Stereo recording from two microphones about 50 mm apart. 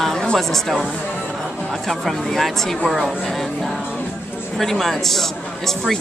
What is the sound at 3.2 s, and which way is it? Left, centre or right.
Music, centre.